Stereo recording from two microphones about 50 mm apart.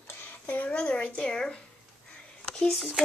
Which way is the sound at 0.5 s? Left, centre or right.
Left.